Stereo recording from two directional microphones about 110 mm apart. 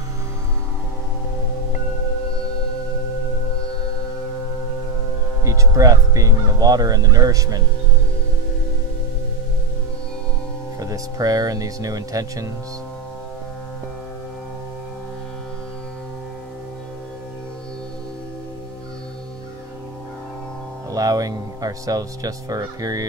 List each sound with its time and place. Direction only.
5.4 s speech: 30° right (ahead or behind)
10.8 s speech: 35° right (ahead or behind)
20.9 s speech: 30° right (ahead or behind)